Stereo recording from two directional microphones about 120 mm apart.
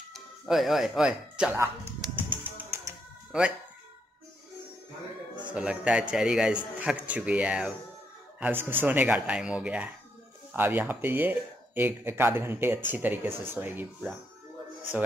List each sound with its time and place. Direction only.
0.1 s speech: centre (ahead or behind)
2.5 s music: 20° right (ahead or behind)
3.3 s speech: 5° right (ahead or behind)
5.5 s speech: 10° right (ahead or behind)